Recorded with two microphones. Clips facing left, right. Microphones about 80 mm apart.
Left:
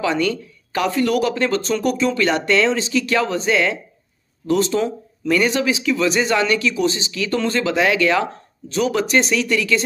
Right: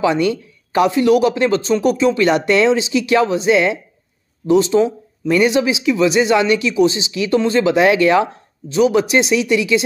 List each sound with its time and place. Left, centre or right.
0.0 s speech: right
1.7 s speech: centre
4.5 s speech: centre; by 8.3 s right
8.7 s speech: centre